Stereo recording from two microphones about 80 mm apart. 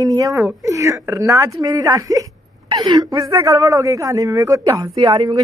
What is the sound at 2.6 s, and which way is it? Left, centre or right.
Speech, right.